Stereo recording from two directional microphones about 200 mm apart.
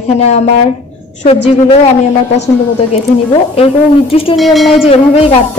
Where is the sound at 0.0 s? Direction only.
35° left (ahead or behind).